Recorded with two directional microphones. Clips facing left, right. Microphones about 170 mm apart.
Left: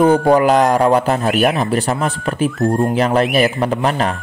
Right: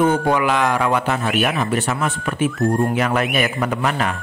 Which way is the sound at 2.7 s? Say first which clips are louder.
Left 2 dB; centre (ahead or behind).